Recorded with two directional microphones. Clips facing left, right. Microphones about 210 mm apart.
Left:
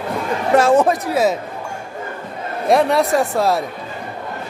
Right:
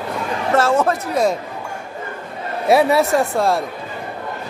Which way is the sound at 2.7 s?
5° right (ahead or behind).